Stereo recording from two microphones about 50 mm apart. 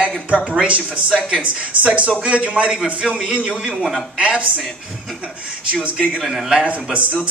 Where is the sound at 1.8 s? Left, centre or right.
Right.